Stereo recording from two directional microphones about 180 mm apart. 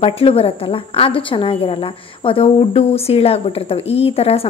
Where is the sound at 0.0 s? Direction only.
30° left (ahead or behind).